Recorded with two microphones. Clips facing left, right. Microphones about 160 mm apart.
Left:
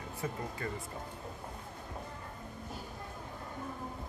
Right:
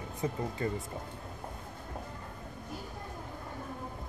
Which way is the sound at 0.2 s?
25° right (ahead or behind).